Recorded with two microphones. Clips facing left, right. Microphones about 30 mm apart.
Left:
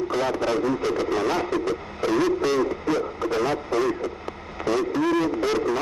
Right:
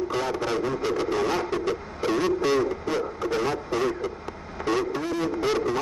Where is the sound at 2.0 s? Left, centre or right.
Centre.